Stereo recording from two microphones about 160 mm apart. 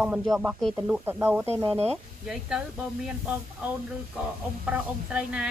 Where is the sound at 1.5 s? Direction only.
35° right (ahead or behind).